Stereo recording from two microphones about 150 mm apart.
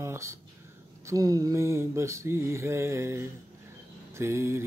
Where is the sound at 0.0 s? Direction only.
20° right (ahead or behind).